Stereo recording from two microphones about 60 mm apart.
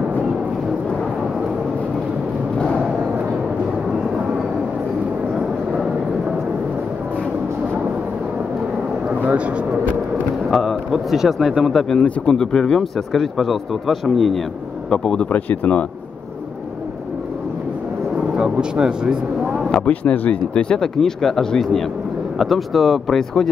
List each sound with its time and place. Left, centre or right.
10.5 s a man's voice: centre
11.9 s speech: centre
15.3 s speech: left
18.1 s speech: centre
19.7 s speech: left; by 23.5 s centre